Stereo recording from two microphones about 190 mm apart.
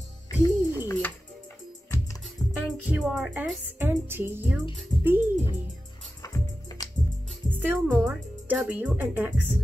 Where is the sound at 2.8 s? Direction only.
5° right (ahead or behind).